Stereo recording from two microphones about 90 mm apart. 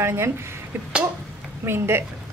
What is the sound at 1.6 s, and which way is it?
Speech, 25° right (ahead or behind).